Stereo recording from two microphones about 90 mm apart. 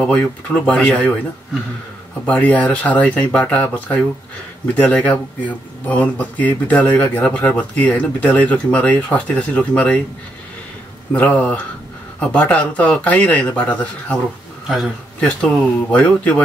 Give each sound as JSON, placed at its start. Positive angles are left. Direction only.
{"t": 0.0, "sound": "speech", "side_deg": 15}
{"t": 2.2, "sound": "speech", "side_deg": 15}
{"t": 11.1, "sound": "speech", "side_deg": 15}
{"t": 15.1, "sound": "speech", "side_deg": 15}